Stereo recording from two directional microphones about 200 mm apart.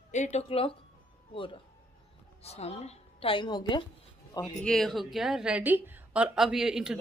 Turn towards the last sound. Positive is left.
turn(degrees=0)  # may be behind; listen again after turning